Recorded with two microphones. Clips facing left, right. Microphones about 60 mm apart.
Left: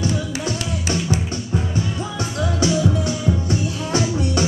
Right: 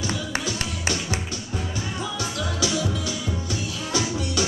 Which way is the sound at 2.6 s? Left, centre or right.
Left.